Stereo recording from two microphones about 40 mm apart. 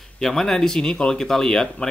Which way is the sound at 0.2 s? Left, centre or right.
Centre.